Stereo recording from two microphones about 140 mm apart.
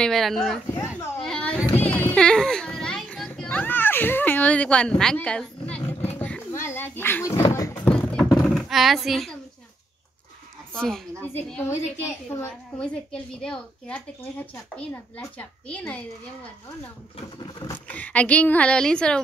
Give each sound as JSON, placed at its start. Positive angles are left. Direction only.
{"t": 0.0, "sound": "speech", "side_deg": 0}
{"t": 0.7, "sound": "speech", "side_deg": 20}
{"t": 1.2, "sound": "a sound", "side_deg": 5}
{"t": 1.6, "sound": "children playing", "side_deg": 15}
{"t": 3.3, "sound": "a child's voice", "side_deg": 10}
{"t": 5.9, "sound": "roaring cats", "side_deg": 15}
{"t": 7.7, "sound": "a sound", "side_deg": 10}
{"t": 10.7, "sound": "speech", "side_deg": 5}
{"t": 12.4, "sound": "a woman's voice", "side_deg": 10}
{"t": 17.8, "sound": "a woman's voice", "side_deg": 10}